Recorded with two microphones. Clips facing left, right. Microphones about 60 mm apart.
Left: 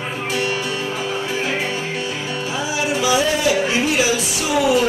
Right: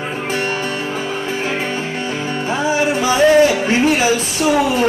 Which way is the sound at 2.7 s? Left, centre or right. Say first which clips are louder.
Right 1 dB; right.